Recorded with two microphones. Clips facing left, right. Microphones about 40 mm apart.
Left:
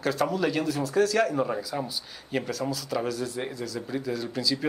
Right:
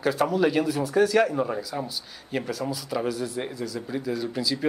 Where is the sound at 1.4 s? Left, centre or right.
Centre.